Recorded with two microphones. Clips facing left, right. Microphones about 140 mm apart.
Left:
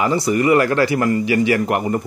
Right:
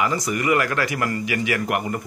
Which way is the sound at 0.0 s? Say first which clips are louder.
Left 6 dB; 30° left (ahead or behind).